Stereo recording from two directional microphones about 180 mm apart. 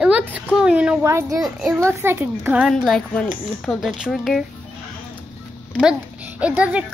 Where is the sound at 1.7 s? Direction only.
15° right (ahead or behind); by 4.4 s centre (ahead or behind).